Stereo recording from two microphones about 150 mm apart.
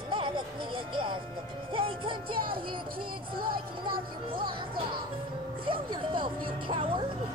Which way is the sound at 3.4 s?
80° right.